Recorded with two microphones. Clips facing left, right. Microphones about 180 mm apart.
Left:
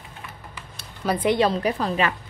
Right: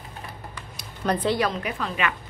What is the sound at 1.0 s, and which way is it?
Speech, 5° left (ahead or behind).